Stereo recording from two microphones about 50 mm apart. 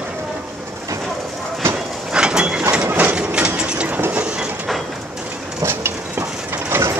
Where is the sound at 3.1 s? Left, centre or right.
Centre.